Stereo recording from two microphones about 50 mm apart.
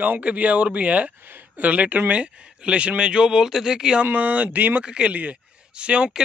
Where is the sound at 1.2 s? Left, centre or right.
Right; by 4.0 s centre.